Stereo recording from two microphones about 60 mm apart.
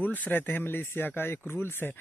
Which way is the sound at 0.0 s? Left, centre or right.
Left.